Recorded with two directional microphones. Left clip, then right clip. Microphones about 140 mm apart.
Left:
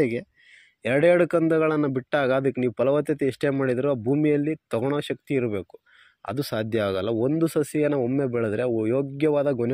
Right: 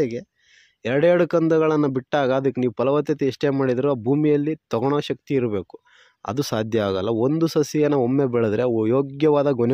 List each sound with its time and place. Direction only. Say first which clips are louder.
0.8 s speech: right 1 dB; 35° right (ahead or behind)